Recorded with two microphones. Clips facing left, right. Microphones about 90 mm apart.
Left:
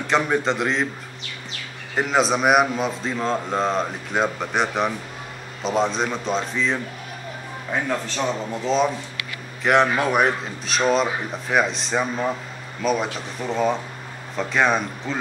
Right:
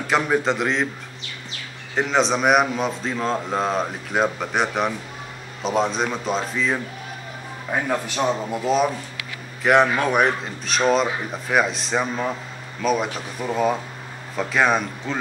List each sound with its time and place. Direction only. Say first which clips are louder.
0.0 s a man's voice: even; 5° right (ahead or behind)
2.0 s a man's voice: even; 5° left (ahead or behind)